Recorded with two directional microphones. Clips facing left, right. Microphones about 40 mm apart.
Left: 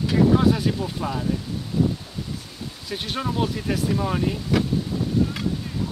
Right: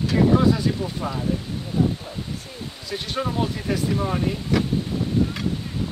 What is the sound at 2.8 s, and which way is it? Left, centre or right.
Speech, centre.